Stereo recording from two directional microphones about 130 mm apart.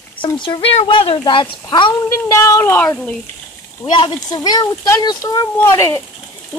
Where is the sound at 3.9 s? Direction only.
35° left (ahead or behind).